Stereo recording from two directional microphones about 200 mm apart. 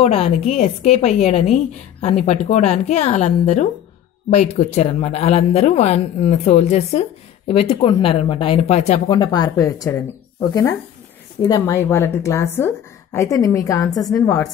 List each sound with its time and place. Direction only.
0.0 s speech: 30° left (ahead or behind)